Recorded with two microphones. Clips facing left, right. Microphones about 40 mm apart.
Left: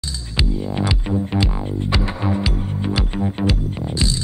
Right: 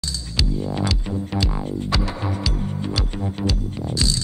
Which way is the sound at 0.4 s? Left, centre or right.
Left.